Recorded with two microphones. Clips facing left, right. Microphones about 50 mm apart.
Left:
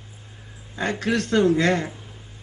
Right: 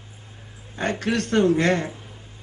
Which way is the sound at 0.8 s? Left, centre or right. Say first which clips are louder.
Even; right.